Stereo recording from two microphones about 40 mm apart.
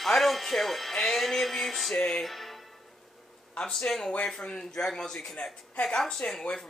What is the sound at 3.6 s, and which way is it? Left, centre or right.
A man's voice, left.